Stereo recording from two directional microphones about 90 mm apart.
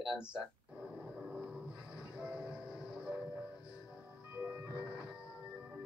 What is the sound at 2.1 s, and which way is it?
Train, 10° right (ahead or behind).